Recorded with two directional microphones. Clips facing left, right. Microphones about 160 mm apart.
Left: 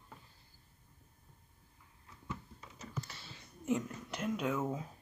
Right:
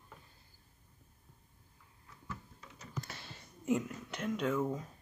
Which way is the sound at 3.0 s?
50° right (ahead or behind).